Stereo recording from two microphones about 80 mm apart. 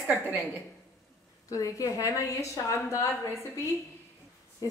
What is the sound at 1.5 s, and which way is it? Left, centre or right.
A woman's voice, left.